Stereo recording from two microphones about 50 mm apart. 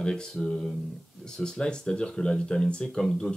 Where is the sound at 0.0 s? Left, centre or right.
Centre.